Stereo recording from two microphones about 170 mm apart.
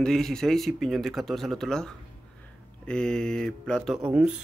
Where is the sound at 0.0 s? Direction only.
5° left (ahead or behind).